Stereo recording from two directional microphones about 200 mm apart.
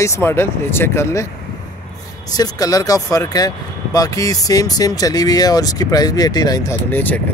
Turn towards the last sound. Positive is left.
turn(degrees=10)  # may be behind; listen again after turning